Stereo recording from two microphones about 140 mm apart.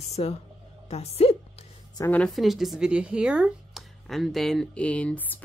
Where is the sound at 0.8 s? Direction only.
50° left (ahead or behind).